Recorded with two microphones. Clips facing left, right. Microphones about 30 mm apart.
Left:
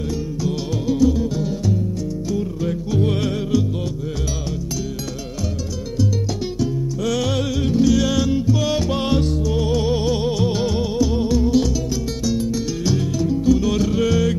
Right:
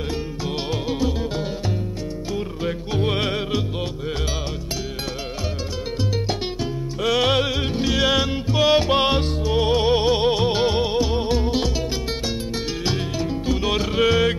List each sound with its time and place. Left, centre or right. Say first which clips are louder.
0.4 s music: left 2 dB; right
6.6 s music: left 2 dB; right